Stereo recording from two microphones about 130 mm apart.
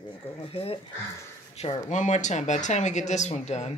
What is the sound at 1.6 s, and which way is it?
Speech, 60° left (ahead or behind).